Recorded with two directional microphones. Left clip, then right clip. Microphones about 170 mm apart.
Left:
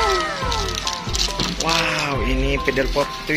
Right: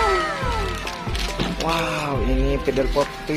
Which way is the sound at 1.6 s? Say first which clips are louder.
Left 3 dB; centre (ahead or behind).